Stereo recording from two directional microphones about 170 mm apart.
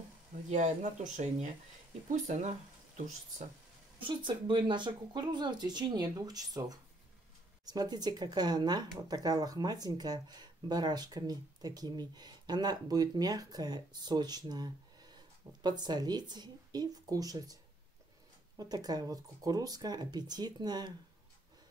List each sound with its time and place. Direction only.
0.5 s speech: 45° right (ahead or behind)
4.0 s speech: 30° right (ahead or behind)
18.6 s speech: 20° right (ahead or behind)